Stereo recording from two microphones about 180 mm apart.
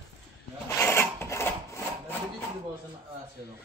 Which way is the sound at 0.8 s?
15° left (ahead or behind).